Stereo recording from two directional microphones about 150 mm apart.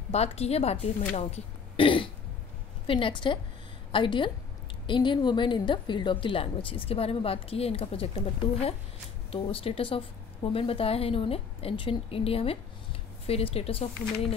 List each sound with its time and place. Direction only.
0.1 s a woman's voice: 45° left (ahead or behind)